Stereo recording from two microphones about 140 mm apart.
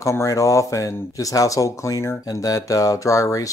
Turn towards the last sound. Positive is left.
turn(degrees=25)  # may be behind; listen again after turning